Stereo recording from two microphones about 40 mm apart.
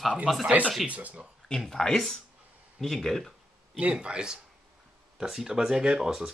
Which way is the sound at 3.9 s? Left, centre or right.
Right.